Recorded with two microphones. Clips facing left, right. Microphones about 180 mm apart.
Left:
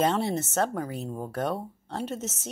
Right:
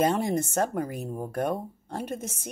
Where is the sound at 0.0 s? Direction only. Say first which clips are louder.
Right 1 dB; 10° right (ahead or behind).